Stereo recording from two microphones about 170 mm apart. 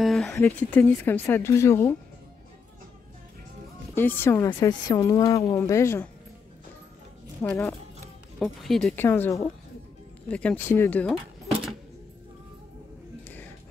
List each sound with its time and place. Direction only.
0.0 s a sound: centre (ahead or behind)
0.4 s speech: 10° left (ahead or behind)
3.9 s speech: 10° left (ahead or behind)
4.5 s a woman's voice: 25° left (ahead or behind)
7.4 s speech: 15° left (ahead or behind)
8.4 s speech: centre (ahead or behind)
8.9 s speech: 10° left (ahead or behind)